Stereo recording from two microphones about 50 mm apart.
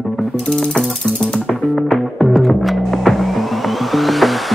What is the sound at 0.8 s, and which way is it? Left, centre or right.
Music, centre.